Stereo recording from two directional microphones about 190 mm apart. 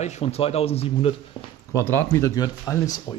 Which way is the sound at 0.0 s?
35° left (ahead or behind).